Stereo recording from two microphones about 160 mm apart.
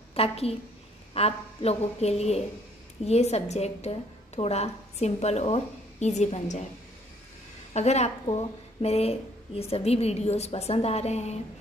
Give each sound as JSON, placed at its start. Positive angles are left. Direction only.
{"t": 0.1, "sound": "a woman's voice", "side_deg": 40}
{"t": 7.7, "sound": "a woman's voice", "side_deg": 45}